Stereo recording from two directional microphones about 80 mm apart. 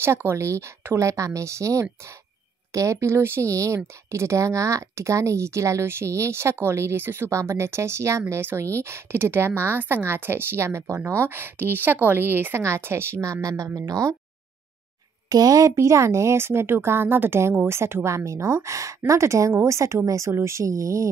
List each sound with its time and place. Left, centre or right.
0.0 s speech: right
15.2 s speech: right